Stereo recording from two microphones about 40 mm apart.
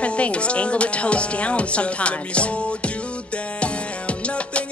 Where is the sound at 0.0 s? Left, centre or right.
Left.